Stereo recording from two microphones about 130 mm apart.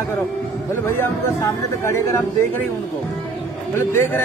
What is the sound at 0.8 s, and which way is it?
Speech, 20° left (ahead or behind).